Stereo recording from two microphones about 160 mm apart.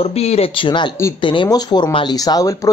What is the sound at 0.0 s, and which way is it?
Speech, 40° left (ahead or behind).